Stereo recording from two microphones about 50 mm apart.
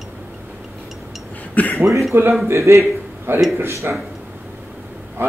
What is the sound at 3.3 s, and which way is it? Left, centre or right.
Speech, right.